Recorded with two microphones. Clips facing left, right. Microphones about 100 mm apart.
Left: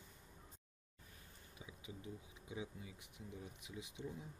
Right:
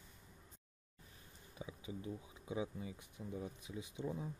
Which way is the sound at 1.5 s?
30° right (ahead or behind).